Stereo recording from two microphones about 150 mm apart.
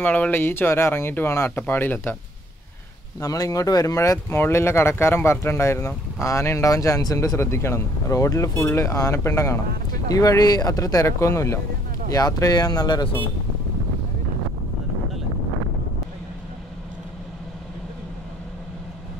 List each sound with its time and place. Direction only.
0.0 s speech: 10° left (ahead or behind)
3.2 s speech: 25° left (ahead or behind)